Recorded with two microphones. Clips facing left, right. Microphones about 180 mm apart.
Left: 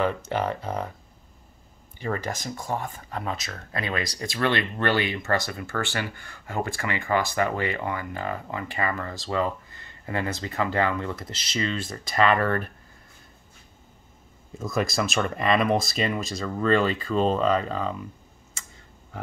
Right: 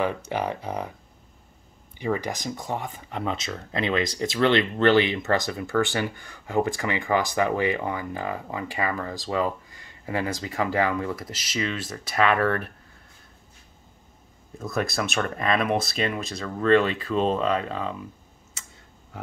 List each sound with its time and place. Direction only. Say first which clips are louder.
0.0 s speech: left 1 dB; 10° right (ahead or behind)
2.0 s speech: right 2 dB; 15° right (ahead or behind)
14.6 s speech: left 1 dB; centre (ahead or behind)